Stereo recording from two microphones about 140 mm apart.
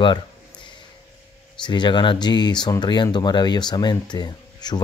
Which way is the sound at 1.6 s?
35° left (ahead or behind).